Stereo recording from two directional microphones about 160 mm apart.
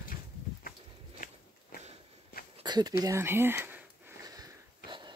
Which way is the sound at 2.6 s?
25° right (ahead or behind).